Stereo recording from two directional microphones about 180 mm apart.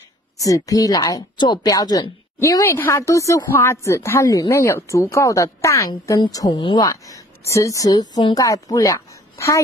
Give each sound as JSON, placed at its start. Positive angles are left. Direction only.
{"t": 0.4, "sound": "a woman's voice", "side_deg": 20}